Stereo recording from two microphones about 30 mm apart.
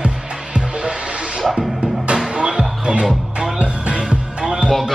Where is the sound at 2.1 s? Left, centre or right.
Right.